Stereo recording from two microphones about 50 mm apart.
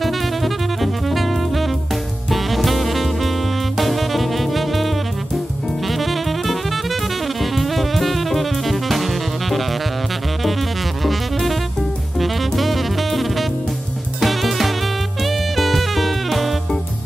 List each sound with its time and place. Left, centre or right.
2.3 s saxophone: centre
3.7 s music: centre
7.5 s drum kit: centre
12.2 s music: centre
14.2 s drum kit: centre
15.2 s saxophone: centre